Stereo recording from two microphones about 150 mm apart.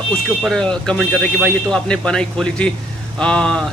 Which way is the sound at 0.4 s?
5° left (ahead or behind).